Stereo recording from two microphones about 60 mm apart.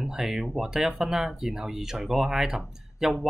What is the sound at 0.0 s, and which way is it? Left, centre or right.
Speech, centre.